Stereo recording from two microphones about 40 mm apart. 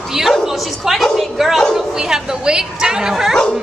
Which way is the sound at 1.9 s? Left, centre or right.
Centre.